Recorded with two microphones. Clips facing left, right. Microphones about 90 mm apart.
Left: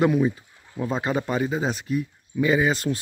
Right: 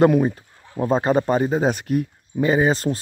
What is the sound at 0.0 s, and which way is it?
Speech, 50° right (ahead or behind).